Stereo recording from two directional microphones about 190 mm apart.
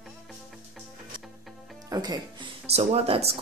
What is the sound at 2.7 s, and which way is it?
Speech, 30° right (ahead or behind).